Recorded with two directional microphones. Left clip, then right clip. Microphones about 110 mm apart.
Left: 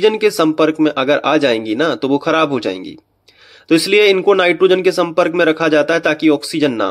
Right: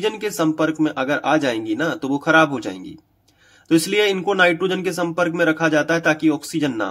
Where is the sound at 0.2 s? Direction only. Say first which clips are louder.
Left 7 dB; 20° left (ahead or behind).